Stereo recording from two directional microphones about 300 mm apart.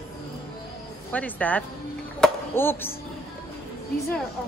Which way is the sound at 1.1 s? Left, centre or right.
Centre.